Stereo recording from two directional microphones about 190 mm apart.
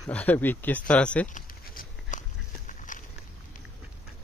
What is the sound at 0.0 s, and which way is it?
Speech, 5° left (ahead or behind).